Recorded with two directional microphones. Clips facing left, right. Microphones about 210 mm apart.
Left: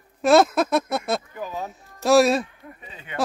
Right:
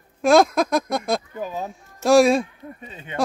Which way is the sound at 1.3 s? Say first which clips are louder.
Right 2 dB; 20° right (ahead or behind).